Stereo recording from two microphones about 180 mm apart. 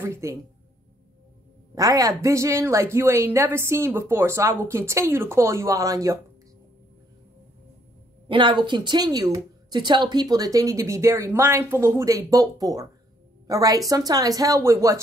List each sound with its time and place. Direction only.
0.0 s a woman's voice: 15° right (ahead or behind)
1.8 s a woman's voice: 20° right (ahead or behind)
8.3 s a woman's voice: 25° right (ahead or behind)